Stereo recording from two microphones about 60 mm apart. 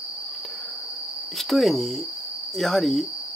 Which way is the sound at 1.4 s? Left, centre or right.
Centre.